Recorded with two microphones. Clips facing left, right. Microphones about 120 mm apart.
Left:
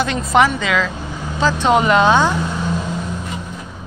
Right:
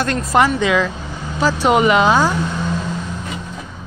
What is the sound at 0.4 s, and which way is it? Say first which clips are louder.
Speech: right 1 dB; 10° right (ahead or behind).